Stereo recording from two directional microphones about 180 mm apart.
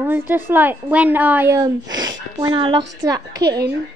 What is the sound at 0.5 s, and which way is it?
A woman's voice, 10° right (ahead or behind).